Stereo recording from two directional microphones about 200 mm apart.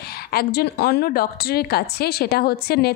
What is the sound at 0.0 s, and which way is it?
Speech, 50° left (ahead or behind).